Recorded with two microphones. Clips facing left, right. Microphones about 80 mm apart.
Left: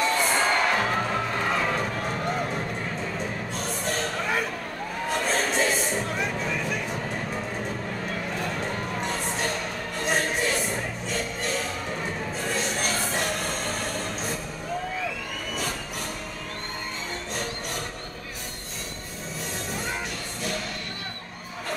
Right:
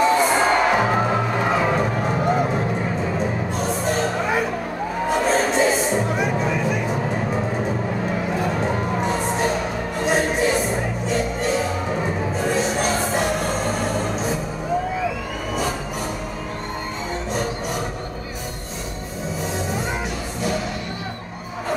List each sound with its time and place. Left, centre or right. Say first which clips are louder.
0.0 s music: right 7 dB; centre
3.5 s music: right 7 dB; centre